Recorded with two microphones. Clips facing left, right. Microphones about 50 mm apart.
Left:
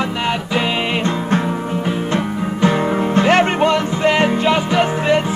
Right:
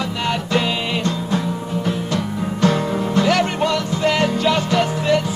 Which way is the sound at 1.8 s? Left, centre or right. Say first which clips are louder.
Left 2 dB; left.